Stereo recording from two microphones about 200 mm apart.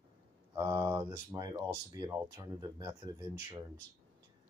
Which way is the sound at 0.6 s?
20° right (ahead or behind).